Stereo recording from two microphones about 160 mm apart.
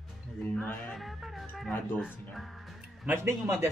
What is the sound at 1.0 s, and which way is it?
Music, centre (ahead or behind).